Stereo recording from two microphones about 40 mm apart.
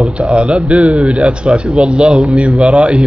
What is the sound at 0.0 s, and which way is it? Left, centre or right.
Speech, right.